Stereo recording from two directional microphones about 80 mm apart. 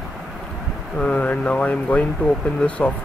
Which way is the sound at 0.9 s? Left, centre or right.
Centre.